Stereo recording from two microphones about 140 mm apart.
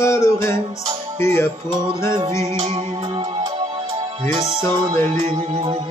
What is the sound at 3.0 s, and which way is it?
Music, 35° right (ahead or behind).